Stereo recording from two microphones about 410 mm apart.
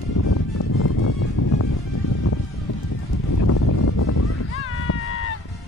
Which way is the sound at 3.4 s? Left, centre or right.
Left.